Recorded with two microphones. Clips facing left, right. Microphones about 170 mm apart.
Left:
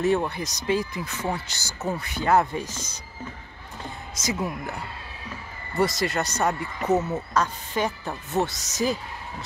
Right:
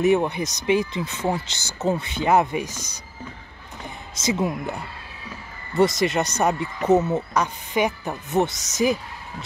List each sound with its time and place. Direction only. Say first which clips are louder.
0.0 s speech: right 4 dB; 20° right (ahead or behind)
3.8 s speech: right 4 dB; 25° right (ahead or behind)
5.8 s speech: right 5 dB; 20° right (ahead or behind)